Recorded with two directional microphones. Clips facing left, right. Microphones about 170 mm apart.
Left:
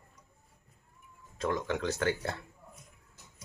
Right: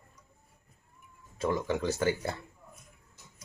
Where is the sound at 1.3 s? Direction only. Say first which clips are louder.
Right 2 dB; 5° right (ahead or behind).